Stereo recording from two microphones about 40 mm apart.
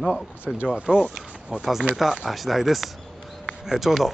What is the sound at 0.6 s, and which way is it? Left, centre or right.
Speech, right.